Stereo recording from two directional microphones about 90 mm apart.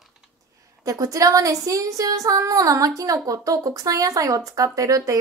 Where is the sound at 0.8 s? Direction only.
40° right (ahead or behind).